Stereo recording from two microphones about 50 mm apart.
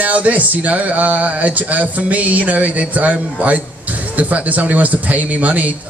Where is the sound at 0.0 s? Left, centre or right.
Right.